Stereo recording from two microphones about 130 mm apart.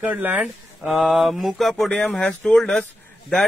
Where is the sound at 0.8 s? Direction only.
Centre (ahead or behind).